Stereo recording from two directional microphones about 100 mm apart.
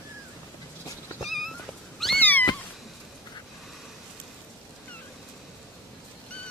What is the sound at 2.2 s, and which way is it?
Cat, 20° left (ahead or behind).